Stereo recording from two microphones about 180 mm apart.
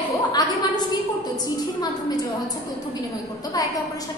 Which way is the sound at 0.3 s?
20° left (ahead or behind).